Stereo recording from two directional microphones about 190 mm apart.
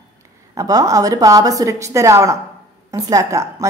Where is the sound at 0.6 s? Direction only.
20° right (ahead or behind).